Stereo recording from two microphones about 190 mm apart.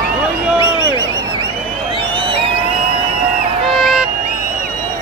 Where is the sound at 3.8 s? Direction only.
Centre (ahead or behind).